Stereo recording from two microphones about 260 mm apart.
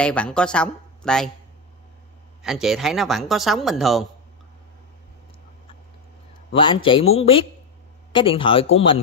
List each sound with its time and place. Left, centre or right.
0.0 s a man's voice: centre
2.4 s speech: centre
6.5 s speech: centre